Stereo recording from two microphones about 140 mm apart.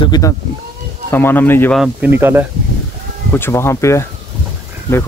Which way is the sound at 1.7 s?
10° right (ahead or behind).